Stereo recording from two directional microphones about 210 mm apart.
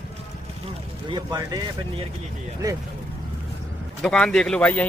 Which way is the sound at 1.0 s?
20° right (ahead or behind).